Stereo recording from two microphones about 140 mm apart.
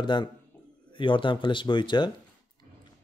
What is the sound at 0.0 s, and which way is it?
Speech, 35° left (ahead or behind).